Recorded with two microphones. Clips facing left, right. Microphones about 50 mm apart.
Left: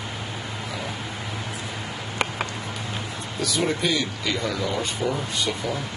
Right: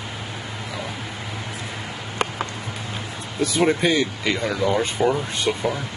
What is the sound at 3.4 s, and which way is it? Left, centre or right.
Speech, right.